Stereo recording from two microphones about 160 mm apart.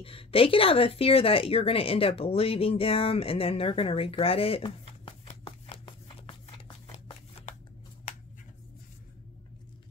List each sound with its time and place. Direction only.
0.0 s speech: 35° left (ahead or behind)